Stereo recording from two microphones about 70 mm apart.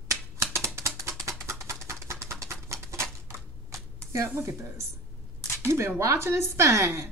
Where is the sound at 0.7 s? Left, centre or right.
Right.